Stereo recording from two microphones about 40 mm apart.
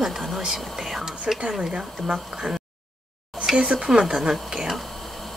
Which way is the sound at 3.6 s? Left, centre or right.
Centre.